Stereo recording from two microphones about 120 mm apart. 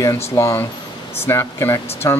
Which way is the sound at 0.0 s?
25° left (ahead or behind).